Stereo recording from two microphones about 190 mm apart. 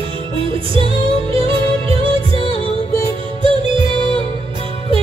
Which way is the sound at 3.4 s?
25° right (ahead or behind).